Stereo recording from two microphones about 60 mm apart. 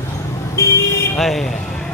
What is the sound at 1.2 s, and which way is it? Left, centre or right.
Speech, centre.